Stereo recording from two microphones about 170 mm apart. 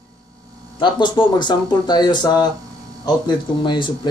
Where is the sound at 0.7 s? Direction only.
25° left (ahead or behind).